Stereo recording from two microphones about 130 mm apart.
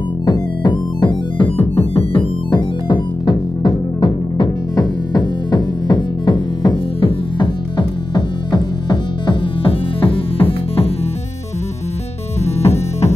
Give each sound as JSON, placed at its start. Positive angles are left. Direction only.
{"t": 0.2, "sound": "music", "side_deg": 35}
{"t": 1.6, "sound": "music", "side_deg": 50}
{"t": 2.5, "sound": "music", "side_deg": 35}
{"t": 12.4, "sound": "music", "side_deg": 55}